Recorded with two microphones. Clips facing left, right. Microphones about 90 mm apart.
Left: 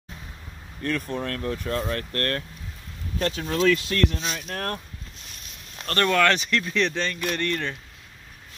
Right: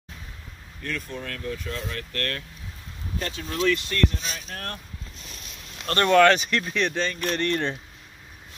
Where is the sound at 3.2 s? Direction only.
90° left.